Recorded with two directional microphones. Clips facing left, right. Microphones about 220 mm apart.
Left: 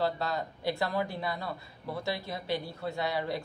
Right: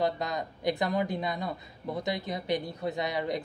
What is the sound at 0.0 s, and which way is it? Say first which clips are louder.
Speech: right 1 dB; 15° right (ahead or behind).